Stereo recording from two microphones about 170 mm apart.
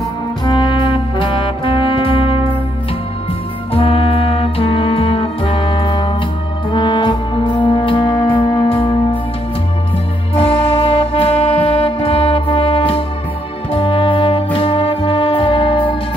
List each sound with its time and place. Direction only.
0.5 s brass instrument: 25° left (ahead or behind)
3.7 s music: 35° left (ahead or behind)
10.3 s music: 35° left (ahead or behind)
13.7 s brass instrument: 30° left (ahead or behind)